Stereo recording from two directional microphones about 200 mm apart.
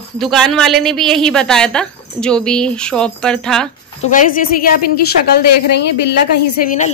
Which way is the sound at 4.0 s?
40° left (ahead or behind).